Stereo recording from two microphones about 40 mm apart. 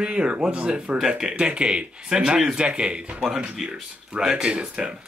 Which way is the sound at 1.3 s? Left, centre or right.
Right.